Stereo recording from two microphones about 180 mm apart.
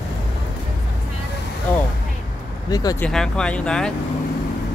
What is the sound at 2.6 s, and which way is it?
Speech, 20° left (ahead or behind).